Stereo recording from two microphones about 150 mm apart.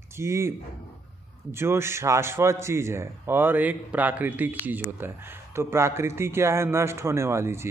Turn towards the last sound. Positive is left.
turn(degrees=-15)  # may be behind; listen again after turning